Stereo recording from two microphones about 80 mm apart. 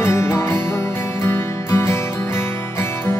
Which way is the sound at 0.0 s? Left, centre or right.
Left.